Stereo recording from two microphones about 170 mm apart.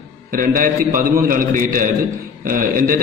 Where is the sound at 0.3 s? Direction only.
55° right (ahead or behind).